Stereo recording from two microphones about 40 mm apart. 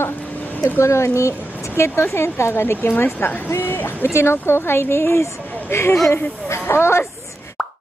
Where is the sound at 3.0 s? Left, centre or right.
Left.